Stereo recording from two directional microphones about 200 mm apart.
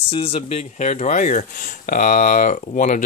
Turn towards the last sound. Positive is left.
turn(degrees=40)  # may be behind; listen again after turning